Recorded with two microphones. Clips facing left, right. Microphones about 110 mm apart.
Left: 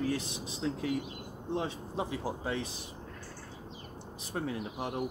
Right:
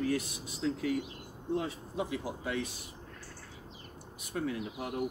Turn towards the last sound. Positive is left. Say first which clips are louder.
# left 1 dB
turn(degrees=25)  # may be behind; listen again after turning